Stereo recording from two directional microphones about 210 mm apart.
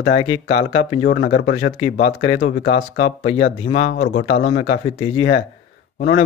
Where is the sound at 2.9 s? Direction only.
35° left (ahead or behind).